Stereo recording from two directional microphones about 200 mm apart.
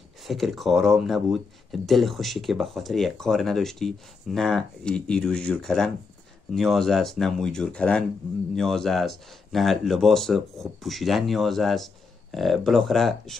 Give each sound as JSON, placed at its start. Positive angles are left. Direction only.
{"t": 0.3, "sound": "speech", "side_deg": 0}